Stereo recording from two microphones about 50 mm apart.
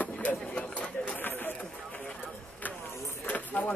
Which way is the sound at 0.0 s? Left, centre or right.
Left.